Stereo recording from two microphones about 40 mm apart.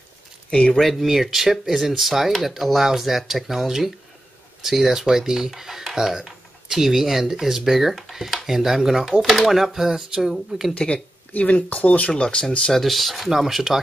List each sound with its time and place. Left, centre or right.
0.5 s speech: left
1.0 s speech: centre
9.7 s speech: centre
10.7 s speech: left
12.7 s speech: centre